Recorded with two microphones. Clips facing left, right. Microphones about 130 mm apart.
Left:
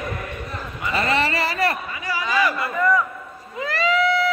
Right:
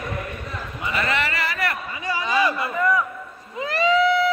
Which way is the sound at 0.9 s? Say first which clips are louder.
Left 3 dB; 30° left (ahead or behind).